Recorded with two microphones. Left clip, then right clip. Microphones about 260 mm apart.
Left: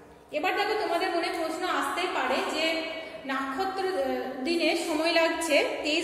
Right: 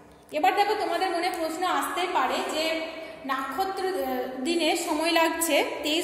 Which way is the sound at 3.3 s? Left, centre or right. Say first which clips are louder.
Right 2 dB; right.